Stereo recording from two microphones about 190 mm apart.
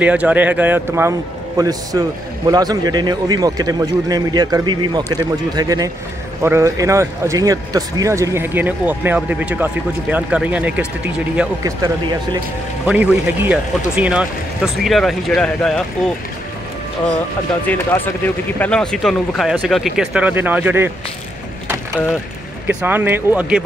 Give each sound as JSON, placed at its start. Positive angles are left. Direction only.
{"t": 0.0, "sound": "a man's voice", "side_deg": -5}
{"t": 12.8, "sound": "speech", "side_deg": -5}
{"t": 17.6, "sound": "speech", "side_deg": 10}
{"t": 22.7, "sound": "speech", "side_deg": -10}